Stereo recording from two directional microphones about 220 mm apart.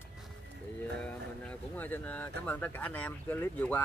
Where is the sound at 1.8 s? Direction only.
5° left (ahead or behind).